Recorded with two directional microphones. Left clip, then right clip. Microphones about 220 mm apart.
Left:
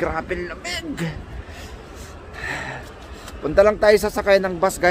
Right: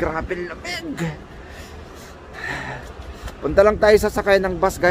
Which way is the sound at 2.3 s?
5° left (ahead or behind).